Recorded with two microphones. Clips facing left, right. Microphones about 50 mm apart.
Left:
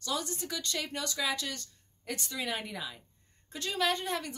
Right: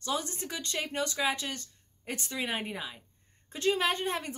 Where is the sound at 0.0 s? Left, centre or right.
Right.